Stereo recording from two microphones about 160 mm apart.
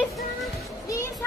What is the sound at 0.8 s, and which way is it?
Music, 20° left (ahead or behind).